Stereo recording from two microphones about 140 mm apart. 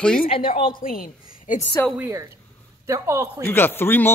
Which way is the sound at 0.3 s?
40° left (ahead or behind).